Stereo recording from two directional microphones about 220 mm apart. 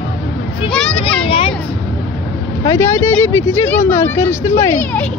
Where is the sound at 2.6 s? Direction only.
10° left (ahead or behind).